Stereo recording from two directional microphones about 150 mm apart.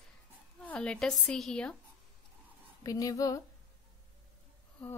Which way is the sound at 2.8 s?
25° left (ahead or behind).